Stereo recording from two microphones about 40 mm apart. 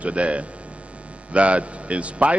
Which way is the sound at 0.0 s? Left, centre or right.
Right.